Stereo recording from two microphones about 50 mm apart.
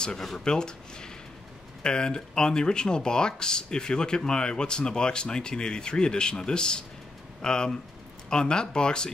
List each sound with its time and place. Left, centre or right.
0.4 s speech: centre